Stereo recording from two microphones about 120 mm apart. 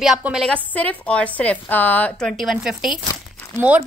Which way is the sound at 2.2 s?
Centre (ahead or behind).